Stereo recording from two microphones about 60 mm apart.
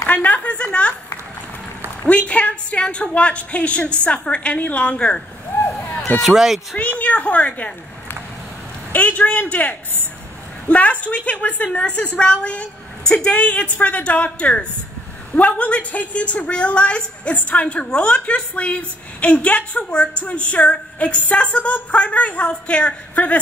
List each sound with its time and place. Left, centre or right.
0.0 s a woman's voice: left
2.0 s a woman's voice: centre
6.1 s speech: centre
6.8 s a woman's voice: left
8.9 s a woman's voice: left